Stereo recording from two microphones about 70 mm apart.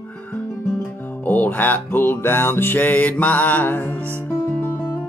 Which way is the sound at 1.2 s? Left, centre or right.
Left.